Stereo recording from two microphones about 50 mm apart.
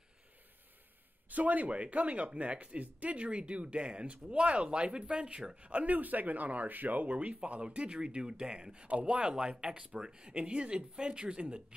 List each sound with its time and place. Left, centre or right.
1.3 s speech: right